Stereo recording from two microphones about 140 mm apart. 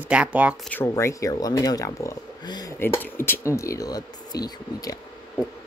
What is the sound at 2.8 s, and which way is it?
Speech, 15° left (ahead or behind).